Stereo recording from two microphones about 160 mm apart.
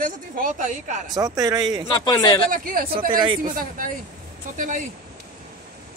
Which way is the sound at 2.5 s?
60° right (ahead or behind).